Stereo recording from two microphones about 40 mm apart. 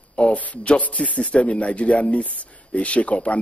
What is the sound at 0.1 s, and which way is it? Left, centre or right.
A man's voice, left.